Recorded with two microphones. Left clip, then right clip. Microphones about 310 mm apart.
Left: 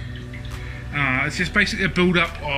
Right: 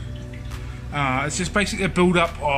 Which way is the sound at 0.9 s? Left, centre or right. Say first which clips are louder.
Left 1 dB; right.